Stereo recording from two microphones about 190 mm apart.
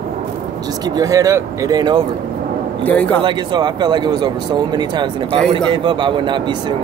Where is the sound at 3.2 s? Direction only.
25° right (ahead or behind).